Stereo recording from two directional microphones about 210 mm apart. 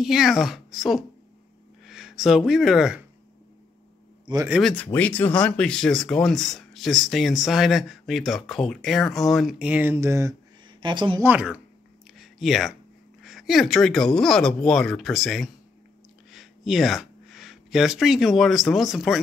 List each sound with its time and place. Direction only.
0.0 s speech: centre (ahead or behind)
4.5 s speech: centre (ahead or behind); by 11.2 s 20° right (ahead or behind)
11.2 s speech: 5° right (ahead or behind)
12.2 s a sound: centre (ahead or behind)
13.2 s speech: centre (ahead or behind)